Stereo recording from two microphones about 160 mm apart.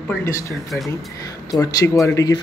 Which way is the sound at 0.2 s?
15° left (ahead or behind).